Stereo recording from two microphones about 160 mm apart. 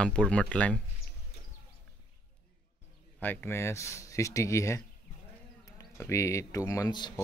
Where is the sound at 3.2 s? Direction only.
10° left (ahead or behind); by 7.2 s 25° left (ahead or behind).